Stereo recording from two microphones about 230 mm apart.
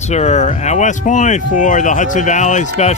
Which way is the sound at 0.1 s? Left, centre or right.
Left.